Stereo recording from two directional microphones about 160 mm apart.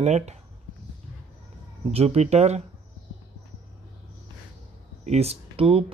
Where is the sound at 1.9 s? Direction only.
40° right (ahead or behind).